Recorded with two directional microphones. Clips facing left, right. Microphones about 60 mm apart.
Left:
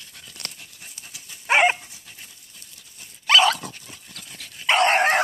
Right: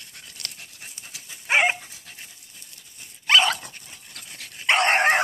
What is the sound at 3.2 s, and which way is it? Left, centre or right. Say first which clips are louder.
Dog: left 2 dB; centre.